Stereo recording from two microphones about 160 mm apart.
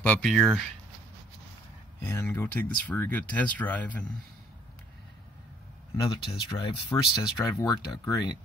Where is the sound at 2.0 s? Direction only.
15° left (ahead or behind).